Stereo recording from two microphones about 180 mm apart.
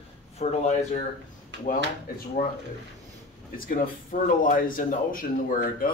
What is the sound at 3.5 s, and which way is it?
Speech, 50° left (ahead or behind).